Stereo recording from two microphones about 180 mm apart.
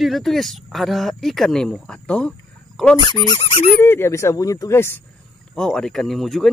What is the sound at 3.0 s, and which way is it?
Speech, 25° left (ahead or behind).